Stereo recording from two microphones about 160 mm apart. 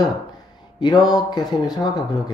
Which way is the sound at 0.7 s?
25° left (ahead or behind).